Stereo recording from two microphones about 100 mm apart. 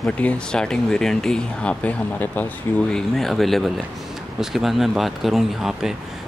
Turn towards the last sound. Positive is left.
turn(degrees=-5)  # may be behind; listen again after turning